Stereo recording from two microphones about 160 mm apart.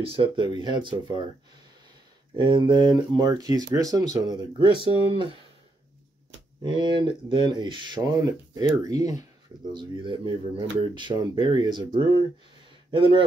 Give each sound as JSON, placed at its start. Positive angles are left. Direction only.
{"t": 0.0, "sound": "speech", "side_deg": -35}
{"t": 2.3, "sound": "speech", "side_deg": -30}
{"t": 6.6, "sound": "speech", "side_deg": -30}